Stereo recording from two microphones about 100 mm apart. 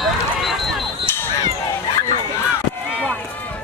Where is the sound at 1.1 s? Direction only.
20° left (ahead or behind).